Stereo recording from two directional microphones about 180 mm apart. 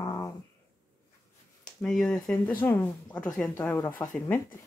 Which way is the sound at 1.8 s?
5° left (ahead or behind).